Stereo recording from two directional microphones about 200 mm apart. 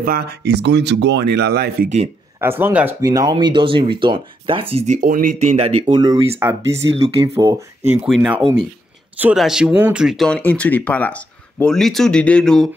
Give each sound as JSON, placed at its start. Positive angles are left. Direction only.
{"t": 0.0, "sound": "speech", "side_deg": -50}
{"t": 2.4, "sound": "speech", "side_deg": -10}
{"t": 5.8, "sound": "speech", "side_deg": -20}
{"t": 8.0, "sound": "speech", "side_deg": -5}